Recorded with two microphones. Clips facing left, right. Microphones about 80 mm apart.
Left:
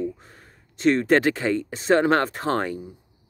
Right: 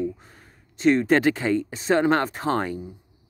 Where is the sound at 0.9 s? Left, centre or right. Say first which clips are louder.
Even; left.